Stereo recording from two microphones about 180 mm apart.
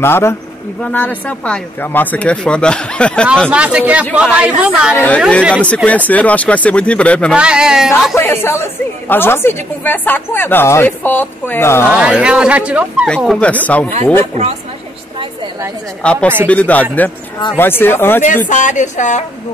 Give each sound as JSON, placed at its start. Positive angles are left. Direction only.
{"t": 0.0, "sound": "speech", "side_deg": 15}
{"t": 3.4, "sound": "a man's voice", "side_deg": -5}
{"t": 4.9, "sound": "speech", "side_deg": 10}
{"t": 5.2, "sound": "speech", "side_deg": -5}
{"t": 5.9, "sound": "speech", "side_deg": 10}
{"t": 7.3, "sound": "speech", "side_deg": -5}
{"t": 8.2, "sound": "speech", "side_deg": 15}
{"t": 11.9, "sound": "speech", "side_deg": -5}
{"t": 16.0, "sound": "speech", "side_deg": 5}
{"t": 18.5, "sound": "speech", "side_deg": 45}